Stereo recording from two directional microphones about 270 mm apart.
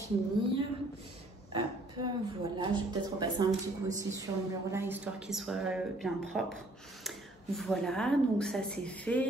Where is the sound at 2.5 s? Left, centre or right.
Centre.